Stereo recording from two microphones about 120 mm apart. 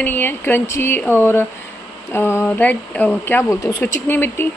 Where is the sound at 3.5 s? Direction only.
30° left (ahead or behind).